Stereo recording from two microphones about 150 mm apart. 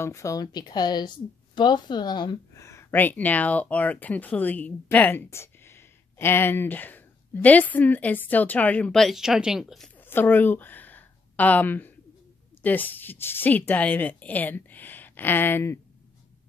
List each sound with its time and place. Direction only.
0.0 s speech: 20° left (ahead or behind); by 9.8 s centre (ahead or behind)
9.9 s a sound: 15° left (ahead or behind)
12.6 s speech: 10° left (ahead or behind)